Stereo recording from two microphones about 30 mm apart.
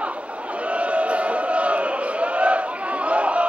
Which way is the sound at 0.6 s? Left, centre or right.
Right.